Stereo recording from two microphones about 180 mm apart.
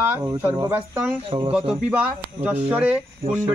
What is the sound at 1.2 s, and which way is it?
Speech, 30° right (ahead or behind).